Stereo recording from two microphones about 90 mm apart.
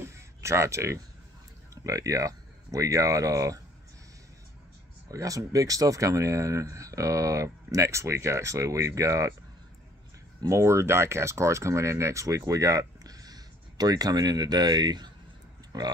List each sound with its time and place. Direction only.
0.0 s a sound: 30° right (ahead or behind)
1.8 s speech: 35° right (ahead or behind)
5.0 s speech: 40° right (ahead or behind)
10.4 s speech: 30° right (ahead or behind); by 15.0 s 50° right (ahead or behind)